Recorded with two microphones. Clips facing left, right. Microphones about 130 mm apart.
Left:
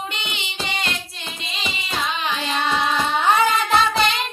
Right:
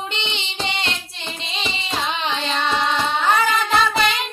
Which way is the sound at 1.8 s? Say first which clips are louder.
Even; centre (ahead or behind).